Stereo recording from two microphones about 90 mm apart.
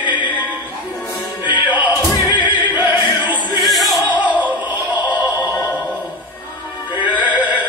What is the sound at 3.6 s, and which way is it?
Music, centre (ahead or behind).